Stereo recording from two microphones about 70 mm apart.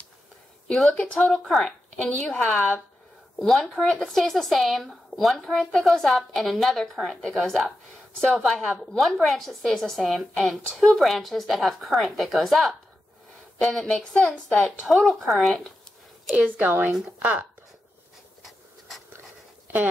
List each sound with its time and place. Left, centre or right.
0.8 s speech: centre
1.2 s a woman's voice: centre
1.9 s a woman's voice: centre
2.2 s a woman's voice: centre
14.9 s speech: centre
16.3 s speech: right
18.4 s a sound: centre